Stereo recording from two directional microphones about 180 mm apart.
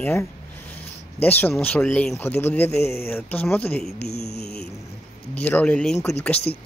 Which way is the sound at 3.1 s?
10° left (ahead or behind).